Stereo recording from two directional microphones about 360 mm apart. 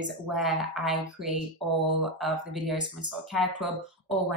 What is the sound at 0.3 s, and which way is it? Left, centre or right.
Speech, centre.